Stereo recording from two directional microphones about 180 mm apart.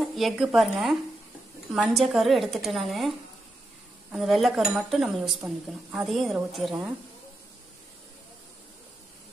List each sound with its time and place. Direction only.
0.0 s speech: centre (ahead or behind)
4.1 s speech: centre (ahead or behind)